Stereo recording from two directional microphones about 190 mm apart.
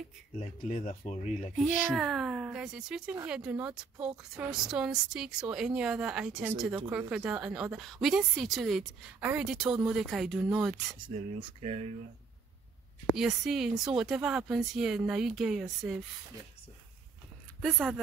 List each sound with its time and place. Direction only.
0.6 s speech: 40° left (ahead or behind)
2.0 s speech: centre (ahead or behind)
11.0 s speech: 25° right (ahead or behind)
13.1 s speech: centre (ahead or behind)
17.6 s speech: centre (ahead or behind)